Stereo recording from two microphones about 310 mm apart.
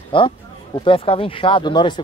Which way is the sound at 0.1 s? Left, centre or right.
Centre.